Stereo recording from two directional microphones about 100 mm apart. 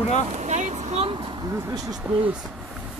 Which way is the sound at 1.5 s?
40° right (ahead or behind).